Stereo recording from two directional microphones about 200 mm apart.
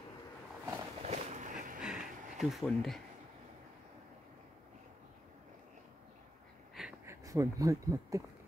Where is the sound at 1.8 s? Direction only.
5° right (ahead or behind).